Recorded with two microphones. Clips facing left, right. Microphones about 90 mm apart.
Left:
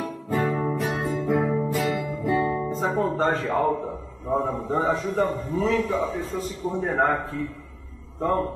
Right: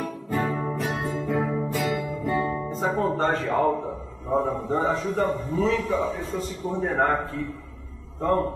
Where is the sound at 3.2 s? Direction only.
Centre (ahead or behind).